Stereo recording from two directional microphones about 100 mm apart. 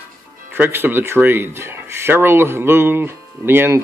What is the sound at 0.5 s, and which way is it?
Speech, 20° right (ahead or behind).